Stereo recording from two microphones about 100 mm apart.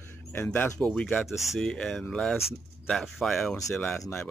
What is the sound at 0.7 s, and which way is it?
Speech, 5° left (ahead or behind).